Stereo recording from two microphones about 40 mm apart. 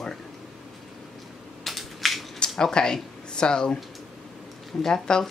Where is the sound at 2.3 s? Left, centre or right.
Centre.